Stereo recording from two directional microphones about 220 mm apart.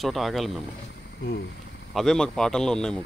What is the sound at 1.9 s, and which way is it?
Speech, centre (ahead or behind).